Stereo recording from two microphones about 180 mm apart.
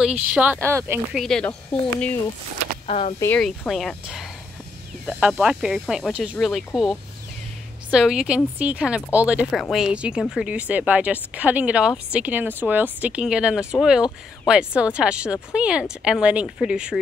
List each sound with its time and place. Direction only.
0.3 s speech: 10° right (ahead or behind)
1.1 s speech: 5° left (ahead or behind)
2.9 s speech: 35° left (ahead or behind)
3.2 s speech: 10° left (ahead or behind)